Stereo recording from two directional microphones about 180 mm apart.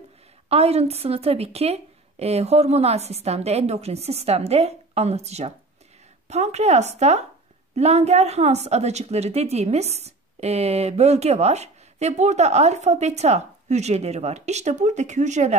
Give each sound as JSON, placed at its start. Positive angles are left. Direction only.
{"t": 0.5, "sound": "a woman's voice", "side_deg": -35}